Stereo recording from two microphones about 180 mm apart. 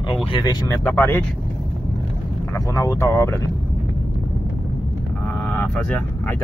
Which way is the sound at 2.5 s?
20° left (ahead or behind).